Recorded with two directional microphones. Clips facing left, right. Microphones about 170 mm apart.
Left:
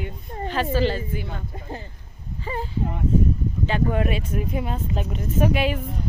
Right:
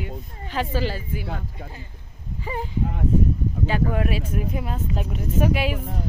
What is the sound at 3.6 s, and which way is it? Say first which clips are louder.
Speech: left 1 dB; 5° right (ahead or behind).